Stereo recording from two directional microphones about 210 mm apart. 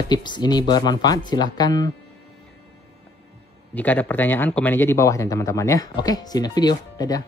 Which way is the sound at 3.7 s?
10° left (ahead or behind).